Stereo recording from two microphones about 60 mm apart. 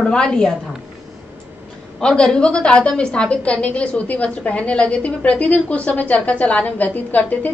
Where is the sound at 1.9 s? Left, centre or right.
Centre.